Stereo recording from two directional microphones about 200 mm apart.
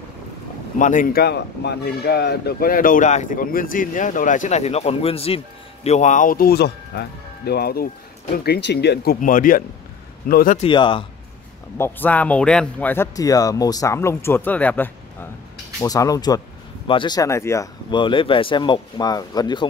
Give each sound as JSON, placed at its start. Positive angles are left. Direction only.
{"t": 0.7, "sound": "speech", "side_deg": 40}
{"t": 10.6, "sound": "speech", "side_deg": 25}
{"t": 11.8, "sound": "speech", "side_deg": 10}